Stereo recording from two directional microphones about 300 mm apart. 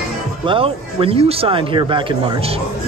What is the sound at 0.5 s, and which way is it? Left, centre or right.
Speech, centre.